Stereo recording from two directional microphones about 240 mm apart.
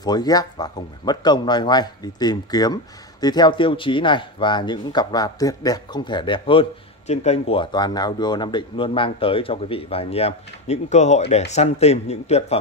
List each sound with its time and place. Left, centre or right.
0.0 s speech: centre